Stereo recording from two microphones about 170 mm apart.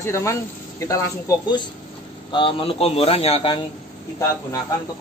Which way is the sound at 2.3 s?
30° left (ahead or behind).